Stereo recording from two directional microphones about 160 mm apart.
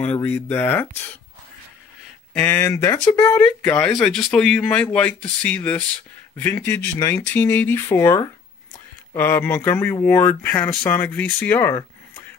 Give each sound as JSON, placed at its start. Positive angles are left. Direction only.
{"t": 0.0, "sound": "speech", "side_deg": 10}
{"t": 2.3, "sound": "speech", "side_deg": 10}